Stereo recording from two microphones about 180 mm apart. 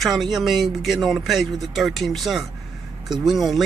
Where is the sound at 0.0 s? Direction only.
Centre (ahead or behind).